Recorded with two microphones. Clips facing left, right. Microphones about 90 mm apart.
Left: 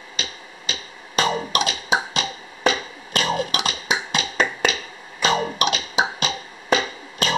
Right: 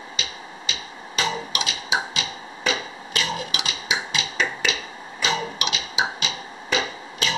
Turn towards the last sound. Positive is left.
turn(degrees=45)  # may be behind; listen again after turning